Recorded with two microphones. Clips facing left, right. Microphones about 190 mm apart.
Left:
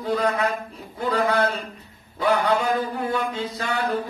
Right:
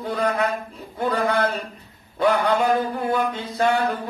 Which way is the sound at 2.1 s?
60° right (ahead or behind).